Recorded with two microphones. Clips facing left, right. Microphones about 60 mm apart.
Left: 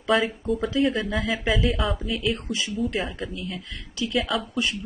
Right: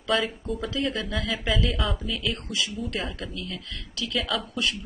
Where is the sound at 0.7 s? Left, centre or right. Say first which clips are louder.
Left 5 dB; centre.